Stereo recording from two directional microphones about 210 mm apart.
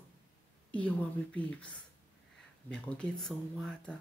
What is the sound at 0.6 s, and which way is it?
Speech, 5° left (ahead or behind).